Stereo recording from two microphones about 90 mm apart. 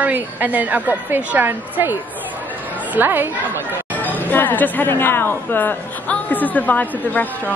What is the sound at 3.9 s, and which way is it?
Speech, 20° left (ahead or behind).